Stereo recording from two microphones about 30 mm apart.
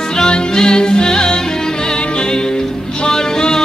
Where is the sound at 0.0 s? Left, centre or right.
Left.